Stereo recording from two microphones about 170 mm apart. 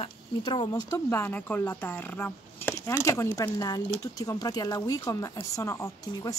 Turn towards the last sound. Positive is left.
turn(degrees=15)  # may be behind; listen again after turning